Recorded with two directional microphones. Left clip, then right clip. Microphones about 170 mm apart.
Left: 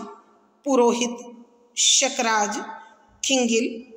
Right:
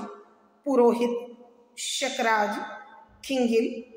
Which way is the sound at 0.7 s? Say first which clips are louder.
Left 1 dB; 45° left (ahead or behind).